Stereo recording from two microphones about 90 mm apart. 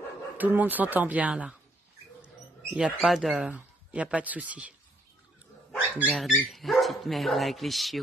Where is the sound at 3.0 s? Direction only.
Centre (ahead or behind).